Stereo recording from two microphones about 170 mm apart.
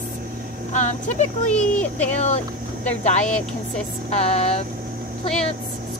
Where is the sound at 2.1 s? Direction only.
40° left (ahead or behind).